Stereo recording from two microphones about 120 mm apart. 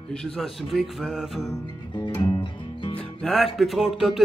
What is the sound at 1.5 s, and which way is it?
Music, 40° left (ahead or behind).